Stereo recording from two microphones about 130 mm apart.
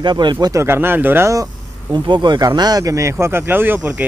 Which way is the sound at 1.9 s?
35° right (ahead or behind).